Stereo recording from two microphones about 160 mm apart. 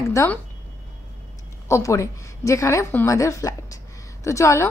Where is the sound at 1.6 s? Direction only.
20° left (ahead or behind).